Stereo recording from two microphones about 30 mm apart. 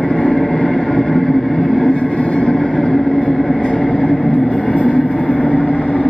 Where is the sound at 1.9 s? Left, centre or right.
Left.